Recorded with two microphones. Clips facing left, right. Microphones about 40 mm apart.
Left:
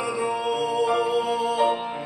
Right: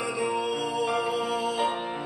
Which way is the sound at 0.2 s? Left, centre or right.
Centre.